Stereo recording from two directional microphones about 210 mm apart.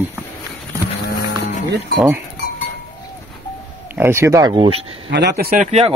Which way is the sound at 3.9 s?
10° right (ahead or behind).